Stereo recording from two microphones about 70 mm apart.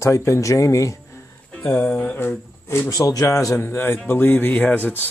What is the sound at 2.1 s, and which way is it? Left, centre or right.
Speech, left.